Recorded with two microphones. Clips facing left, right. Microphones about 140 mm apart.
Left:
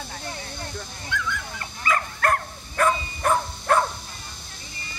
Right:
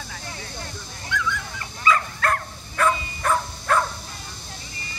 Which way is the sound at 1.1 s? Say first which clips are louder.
Right 2 dB; 55° left (ahead or behind).